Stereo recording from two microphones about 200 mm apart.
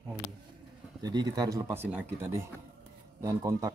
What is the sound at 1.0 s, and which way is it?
Speech, 20° right (ahead or behind).